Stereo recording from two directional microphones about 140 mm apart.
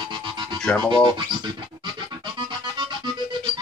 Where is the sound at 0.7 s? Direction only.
5° left (ahead or behind).